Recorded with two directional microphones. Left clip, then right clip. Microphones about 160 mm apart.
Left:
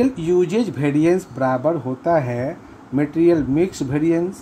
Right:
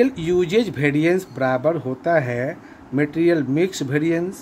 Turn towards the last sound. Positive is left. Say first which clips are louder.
# left 2 dB
turn(degrees=0)  # may be behind; listen again after turning